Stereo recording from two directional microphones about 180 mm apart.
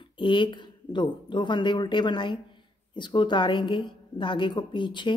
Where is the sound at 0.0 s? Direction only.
25° left (ahead or behind).